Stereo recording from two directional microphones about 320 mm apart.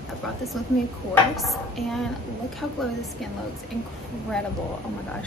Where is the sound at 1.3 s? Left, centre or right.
Centre.